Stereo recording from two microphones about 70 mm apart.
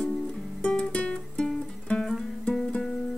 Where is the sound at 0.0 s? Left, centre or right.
Centre.